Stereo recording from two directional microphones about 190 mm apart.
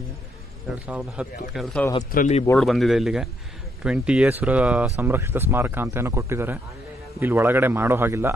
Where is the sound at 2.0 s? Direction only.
45° left (ahead or behind).